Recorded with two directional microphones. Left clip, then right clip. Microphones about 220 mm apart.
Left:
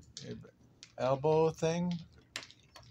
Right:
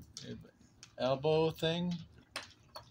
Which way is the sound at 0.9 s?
35° left (ahead or behind).